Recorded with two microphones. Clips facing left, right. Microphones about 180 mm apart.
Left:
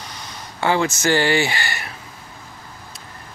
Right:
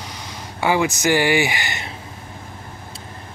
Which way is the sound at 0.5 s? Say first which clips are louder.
Even; 15° right (ahead or behind).